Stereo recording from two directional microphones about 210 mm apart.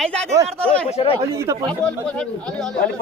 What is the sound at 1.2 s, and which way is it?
Speech, 15° right (ahead or behind).